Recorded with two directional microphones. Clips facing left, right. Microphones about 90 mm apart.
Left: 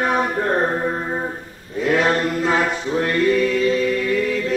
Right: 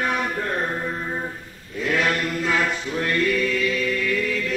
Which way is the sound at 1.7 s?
30° left (ahead or behind).